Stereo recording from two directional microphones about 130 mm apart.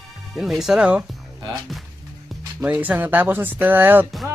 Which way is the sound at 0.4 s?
5° right (ahead or behind).